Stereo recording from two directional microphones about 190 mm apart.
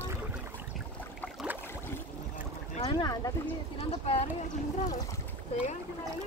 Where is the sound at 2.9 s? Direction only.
20° left (ahead or behind).